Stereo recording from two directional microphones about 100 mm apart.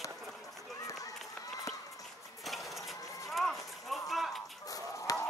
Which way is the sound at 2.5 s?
Centre (ahead or behind).